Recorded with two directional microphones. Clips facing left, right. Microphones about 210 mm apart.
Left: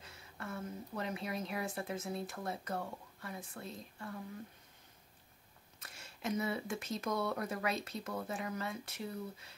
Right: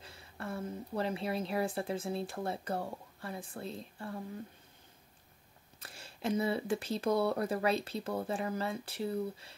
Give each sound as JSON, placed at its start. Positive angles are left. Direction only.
{"t": 0.0, "sound": "a woman's voice", "side_deg": -30}
{"t": 5.8, "sound": "speech", "side_deg": -30}